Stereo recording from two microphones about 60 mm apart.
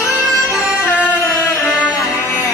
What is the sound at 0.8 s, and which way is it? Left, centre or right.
Music, left.